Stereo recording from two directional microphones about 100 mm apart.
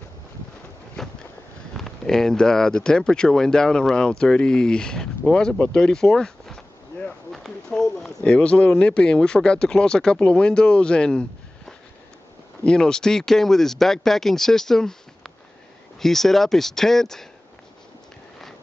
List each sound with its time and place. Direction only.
1.0 s boat: 5° left (ahead or behind)
1.8 s speech: 5° left (ahead or behind)